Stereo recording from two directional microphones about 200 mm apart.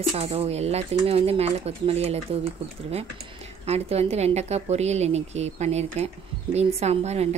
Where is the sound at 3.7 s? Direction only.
30° right (ahead or behind).